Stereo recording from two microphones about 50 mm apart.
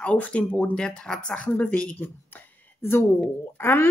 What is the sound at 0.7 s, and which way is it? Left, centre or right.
Speech, centre.